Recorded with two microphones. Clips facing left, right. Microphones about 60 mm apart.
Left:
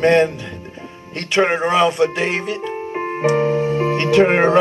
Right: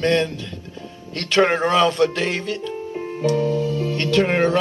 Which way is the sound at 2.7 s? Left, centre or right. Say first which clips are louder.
Left 4 dB; left.